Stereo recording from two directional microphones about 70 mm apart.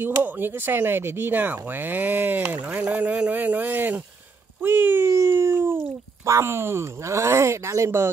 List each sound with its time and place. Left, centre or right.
0.0 s speech: right
4.6 s a sound: right
6.2 s speech: right